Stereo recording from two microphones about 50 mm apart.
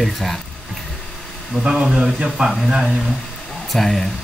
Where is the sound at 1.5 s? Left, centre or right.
Centre.